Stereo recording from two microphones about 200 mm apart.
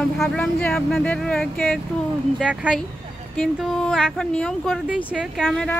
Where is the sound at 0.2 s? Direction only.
5° left (ahead or behind).